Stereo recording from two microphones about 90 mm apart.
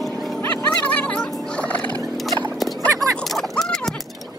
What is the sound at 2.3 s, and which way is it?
Horse, centre (ahead or behind).